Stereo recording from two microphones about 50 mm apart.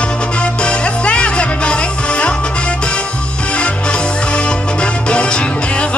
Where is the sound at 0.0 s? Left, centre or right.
Left.